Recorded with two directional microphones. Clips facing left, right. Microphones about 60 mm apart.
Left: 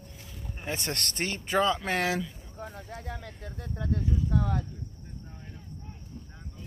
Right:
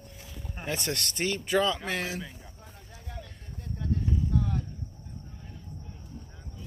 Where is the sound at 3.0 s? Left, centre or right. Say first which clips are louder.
Left 5 dB; left.